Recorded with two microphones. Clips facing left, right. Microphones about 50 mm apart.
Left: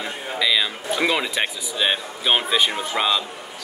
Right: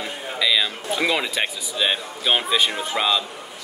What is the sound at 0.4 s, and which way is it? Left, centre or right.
Speech, centre.